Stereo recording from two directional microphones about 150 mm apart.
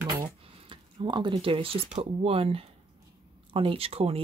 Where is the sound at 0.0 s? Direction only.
30° right (ahead or behind).